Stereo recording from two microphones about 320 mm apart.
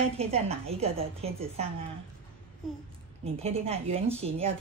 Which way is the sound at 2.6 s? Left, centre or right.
Centre.